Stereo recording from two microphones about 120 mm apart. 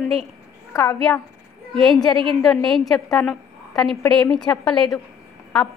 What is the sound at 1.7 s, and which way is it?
A woman's voice, centre (ahead or behind).